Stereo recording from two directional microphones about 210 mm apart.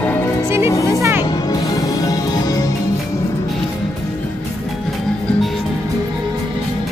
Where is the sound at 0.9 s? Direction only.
15° right (ahead or behind).